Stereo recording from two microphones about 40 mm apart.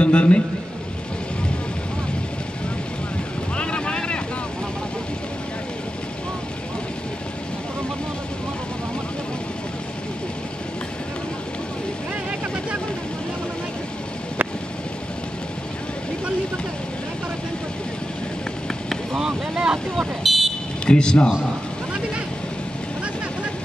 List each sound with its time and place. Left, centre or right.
0.0 s a man's voice: left
3.5 s boat: left
19.1 s vehicle: centre
20.2 s vehicle: centre
20.8 s speech: left